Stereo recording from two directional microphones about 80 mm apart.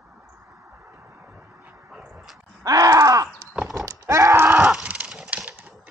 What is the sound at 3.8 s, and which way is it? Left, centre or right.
Horse, right.